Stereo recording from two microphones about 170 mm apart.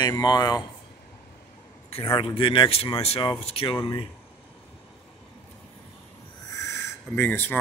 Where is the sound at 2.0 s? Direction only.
30° left (ahead or behind).